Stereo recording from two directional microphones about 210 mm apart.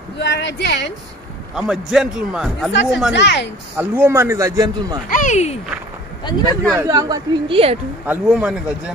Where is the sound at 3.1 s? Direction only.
55° left (ahead or behind).